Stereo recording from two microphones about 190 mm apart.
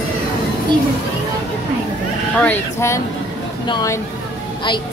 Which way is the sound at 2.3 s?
10° left (ahead or behind).